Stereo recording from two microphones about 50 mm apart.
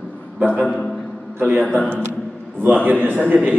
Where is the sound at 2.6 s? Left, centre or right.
Right.